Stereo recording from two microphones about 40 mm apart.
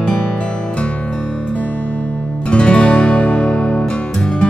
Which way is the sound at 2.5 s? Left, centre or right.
Left.